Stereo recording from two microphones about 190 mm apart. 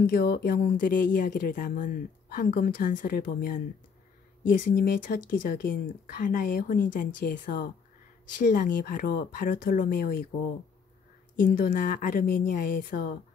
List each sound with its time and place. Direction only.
0.0 s speech: 50° left (ahead or behind)
11.3 s speech: 45° left (ahead or behind)